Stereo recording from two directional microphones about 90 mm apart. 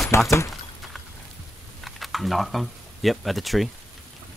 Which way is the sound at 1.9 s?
Centre (ahead or behind).